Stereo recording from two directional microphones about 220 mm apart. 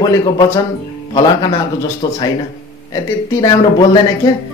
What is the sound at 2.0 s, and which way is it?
A man's voice, 20° left (ahead or behind).